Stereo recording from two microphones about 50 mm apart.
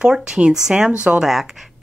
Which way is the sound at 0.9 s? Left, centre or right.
Right.